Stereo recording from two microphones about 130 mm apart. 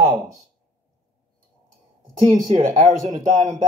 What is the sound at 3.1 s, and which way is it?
Speech, 80° right.